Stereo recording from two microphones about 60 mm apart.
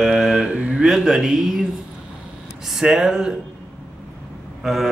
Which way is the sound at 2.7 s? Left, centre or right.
Centre.